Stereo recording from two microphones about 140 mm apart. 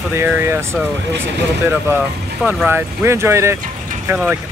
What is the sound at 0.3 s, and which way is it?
Speech, 15° right (ahead or behind).